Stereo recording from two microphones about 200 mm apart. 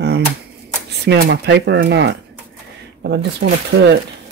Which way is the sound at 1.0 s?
55° right (ahead or behind).